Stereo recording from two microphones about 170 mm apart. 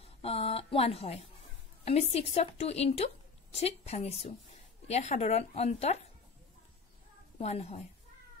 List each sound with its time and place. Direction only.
0.2 s a woman's voice: 35° left (ahead or behind)
7.3 s a woman's voice: 40° left (ahead or behind)